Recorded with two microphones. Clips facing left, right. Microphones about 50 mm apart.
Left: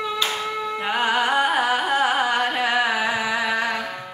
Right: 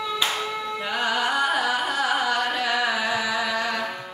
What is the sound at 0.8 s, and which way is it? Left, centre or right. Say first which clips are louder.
Carnatic music: left 4 dB; left.